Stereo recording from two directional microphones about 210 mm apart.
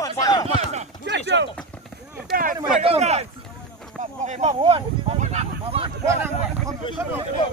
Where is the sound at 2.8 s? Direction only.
30° right (ahead or behind).